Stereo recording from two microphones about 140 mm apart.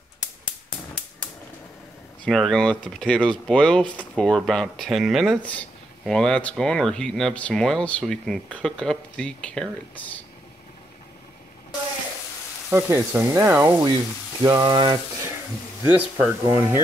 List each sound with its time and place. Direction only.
2.2 s speech: 5° left (ahead or behind)
5.4 s speech: 10° left (ahead or behind)
12.6 s frying: 15° right (ahead or behind)
14.4 s frying: 30° right (ahead or behind)
15.9 s speech: 15° right (ahead or behind)